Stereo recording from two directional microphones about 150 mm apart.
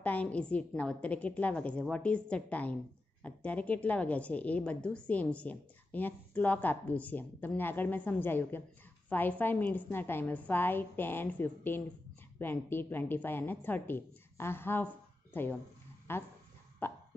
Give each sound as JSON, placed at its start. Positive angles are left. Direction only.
{"t": 0.0, "sound": "a woman's voice", "side_deg": 10}
{"t": 16.8, "sound": "cough", "side_deg": 15}